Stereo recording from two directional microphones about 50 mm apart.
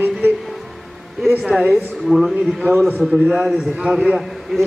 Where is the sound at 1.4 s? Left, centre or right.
Centre.